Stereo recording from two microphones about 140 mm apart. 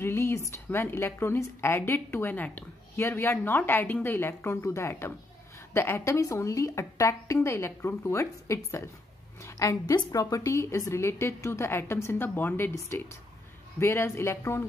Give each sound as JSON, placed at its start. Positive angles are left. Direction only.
{"t": 0.0, "sound": "a woman's voice", "side_deg": 20}